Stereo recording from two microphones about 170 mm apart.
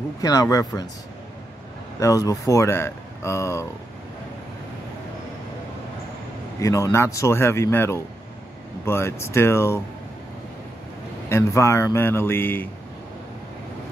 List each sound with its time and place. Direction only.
0.2 s speech: 20° left (ahead or behind)
2.0 s speech: 20° left (ahead or behind)
6.6 s speech: 20° left (ahead or behind)
11.2 s speech: 15° left (ahead or behind)